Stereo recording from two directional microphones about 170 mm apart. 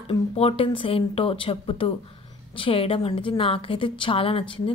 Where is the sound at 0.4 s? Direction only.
35° left (ahead or behind).